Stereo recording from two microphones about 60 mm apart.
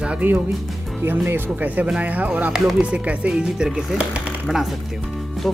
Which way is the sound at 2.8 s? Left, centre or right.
Centre.